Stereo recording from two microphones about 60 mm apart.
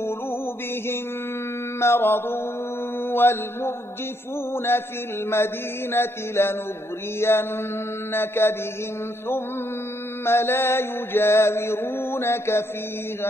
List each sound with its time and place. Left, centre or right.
1.8 s mantra: left
5.3 s mantra: left
10.2 s mantra: left